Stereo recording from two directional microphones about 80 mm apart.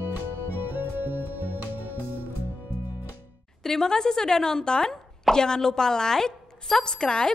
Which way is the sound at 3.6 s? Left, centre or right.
Centre.